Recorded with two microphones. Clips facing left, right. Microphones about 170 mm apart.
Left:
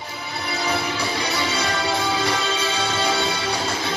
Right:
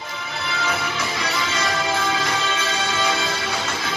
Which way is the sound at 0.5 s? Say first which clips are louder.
Left 2 dB; 35° left (ahead or behind).